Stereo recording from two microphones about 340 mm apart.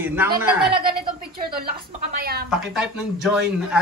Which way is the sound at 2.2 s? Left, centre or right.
Right.